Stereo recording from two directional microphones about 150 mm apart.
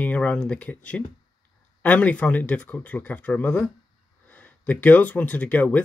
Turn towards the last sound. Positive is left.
turn(degrees=10)  # may be behind; listen again after turning